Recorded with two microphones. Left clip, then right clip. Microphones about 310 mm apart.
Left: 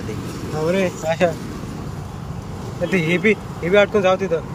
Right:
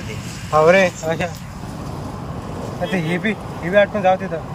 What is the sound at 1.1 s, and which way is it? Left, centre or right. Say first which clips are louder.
Speech: even; centre.